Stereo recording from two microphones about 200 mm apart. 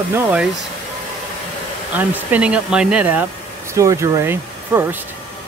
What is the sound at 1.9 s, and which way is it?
Speech, 10° right (ahead or behind).